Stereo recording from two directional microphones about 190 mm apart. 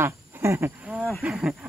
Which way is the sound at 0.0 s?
15° right (ahead or behind).